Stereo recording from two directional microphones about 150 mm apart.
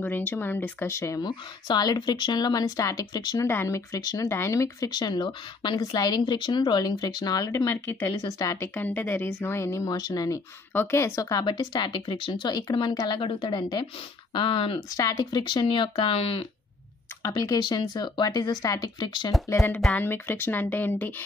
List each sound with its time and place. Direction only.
0.0 s speech: 10° left (ahead or behind); by 3.4 s 25° left (ahead or behind)
3.4 s speech: 15° left (ahead or behind)
8.2 s speech: 30° left (ahead or behind)
8.7 s speech: 10° left (ahead or behind); by 16.3 s 40° left (ahead or behind)
17.2 s speech: 25° left (ahead or behind)